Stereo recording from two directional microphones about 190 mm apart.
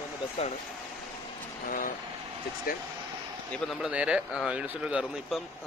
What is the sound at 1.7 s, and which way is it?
Speech, 50° left (ahead or behind).